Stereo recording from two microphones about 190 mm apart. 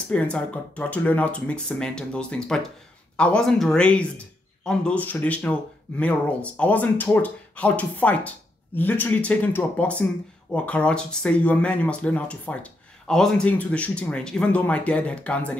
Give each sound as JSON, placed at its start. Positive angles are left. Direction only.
{"t": 0.1, "sound": "speech", "side_deg": 5}